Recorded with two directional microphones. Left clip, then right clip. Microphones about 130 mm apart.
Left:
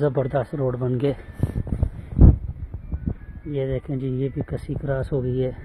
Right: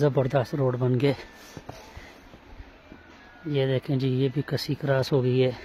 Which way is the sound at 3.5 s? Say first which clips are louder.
Right 1 dB; 30° right (ahead or behind).